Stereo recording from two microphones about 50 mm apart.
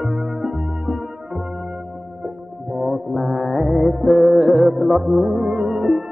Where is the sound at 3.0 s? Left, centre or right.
Centre.